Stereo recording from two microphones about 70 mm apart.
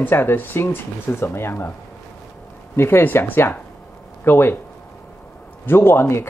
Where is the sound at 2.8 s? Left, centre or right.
Left.